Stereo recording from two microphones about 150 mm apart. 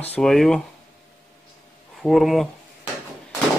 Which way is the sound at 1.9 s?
Centre (ahead or behind).